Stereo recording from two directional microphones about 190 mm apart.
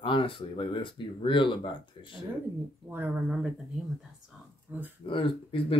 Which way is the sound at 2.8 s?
10° right (ahead or behind).